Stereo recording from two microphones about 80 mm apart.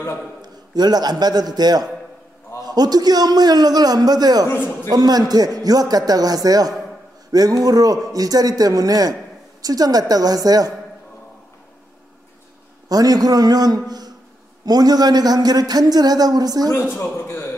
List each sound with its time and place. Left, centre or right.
0.4 s a man's voice: right
4.5 s a man's voice: left
4.8 s a man's voice: right
12.8 s a man's voice: right
16.9 s a man's voice: left